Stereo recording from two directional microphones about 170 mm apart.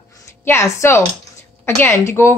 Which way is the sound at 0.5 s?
15° left (ahead or behind).